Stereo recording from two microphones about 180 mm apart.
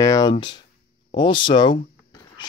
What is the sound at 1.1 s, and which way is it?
Speech, 25° left (ahead or behind).